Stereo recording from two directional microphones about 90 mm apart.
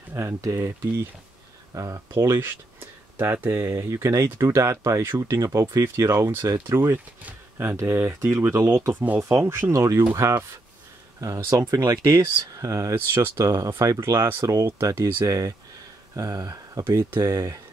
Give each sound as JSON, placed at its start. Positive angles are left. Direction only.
{"t": 0.1, "sound": "speech", "side_deg": -35}
{"t": 16.8, "sound": "speech", "side_deg": -30}